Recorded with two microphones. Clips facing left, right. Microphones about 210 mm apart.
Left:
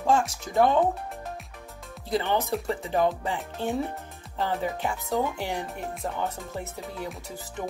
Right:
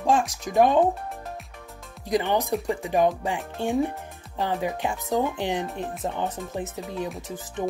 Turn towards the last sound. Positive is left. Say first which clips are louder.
# right 4 dB
turn(degrees=-20)  # may be behind; listen again after turning